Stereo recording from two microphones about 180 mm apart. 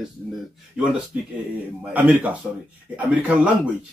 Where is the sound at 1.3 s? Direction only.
10° right (ahead or behind).